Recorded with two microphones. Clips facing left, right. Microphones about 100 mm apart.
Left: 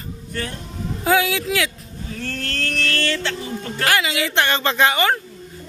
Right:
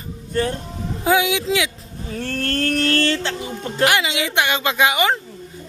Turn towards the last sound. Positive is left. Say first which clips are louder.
# even
turn(degrees=-15)  # may be behind; listen again after turning